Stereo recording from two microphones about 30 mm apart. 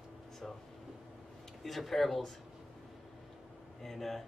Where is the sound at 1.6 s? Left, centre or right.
Centre.